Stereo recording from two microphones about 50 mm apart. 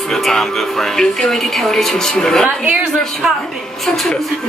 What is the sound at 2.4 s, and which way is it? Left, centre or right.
Speech, right.